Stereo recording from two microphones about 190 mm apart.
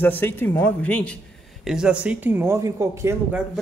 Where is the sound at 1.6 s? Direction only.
5° right (ahead or behind).